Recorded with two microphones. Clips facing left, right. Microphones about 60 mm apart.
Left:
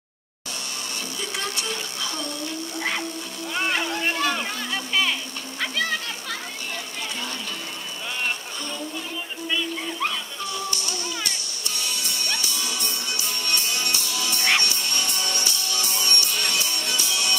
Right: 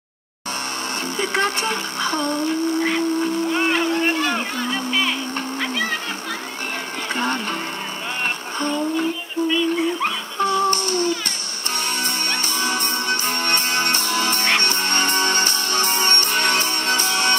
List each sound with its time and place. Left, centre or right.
1.2 s speech: right
4.6 s music: centre
10.4 s music: right